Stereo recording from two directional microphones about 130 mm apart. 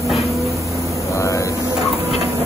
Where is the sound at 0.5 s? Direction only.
25° right (ahead or behind).